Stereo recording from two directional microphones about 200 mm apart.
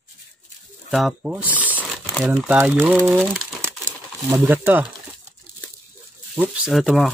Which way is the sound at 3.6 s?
15° right (ahead or behind).